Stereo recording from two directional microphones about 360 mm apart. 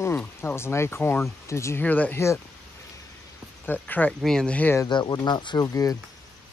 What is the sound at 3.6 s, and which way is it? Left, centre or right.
Speech, centre.